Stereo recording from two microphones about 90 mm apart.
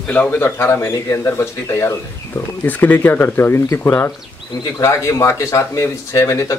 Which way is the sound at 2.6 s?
20° left (ahead or behind).